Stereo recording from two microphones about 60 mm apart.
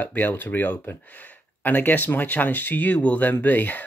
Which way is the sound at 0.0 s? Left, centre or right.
Left.